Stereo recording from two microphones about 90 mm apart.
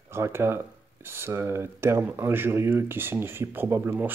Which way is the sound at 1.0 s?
25° right (ahead or behind).